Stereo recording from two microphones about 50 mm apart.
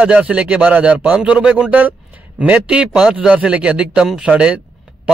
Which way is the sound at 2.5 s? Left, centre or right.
Centre.